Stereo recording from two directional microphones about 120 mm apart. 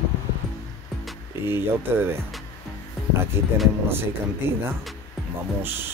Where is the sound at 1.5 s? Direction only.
20° right (ahead or behind).